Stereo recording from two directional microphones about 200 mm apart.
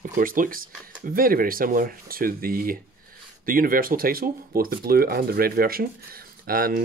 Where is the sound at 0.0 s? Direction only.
45° right (ahead or behind).